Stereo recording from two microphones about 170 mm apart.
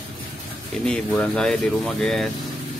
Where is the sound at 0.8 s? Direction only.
5° left (ahead or behind).